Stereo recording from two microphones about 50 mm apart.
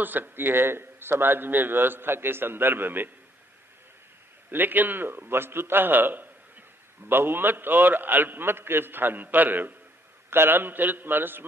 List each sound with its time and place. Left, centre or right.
0.0 s a man's voice: right
4.5 s a man's voice: right